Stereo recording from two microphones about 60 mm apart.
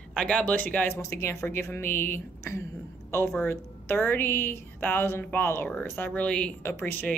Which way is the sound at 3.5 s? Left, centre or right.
Left.